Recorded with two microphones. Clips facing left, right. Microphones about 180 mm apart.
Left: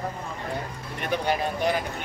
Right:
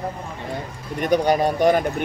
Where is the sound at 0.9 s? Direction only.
40° right (ahead or behind).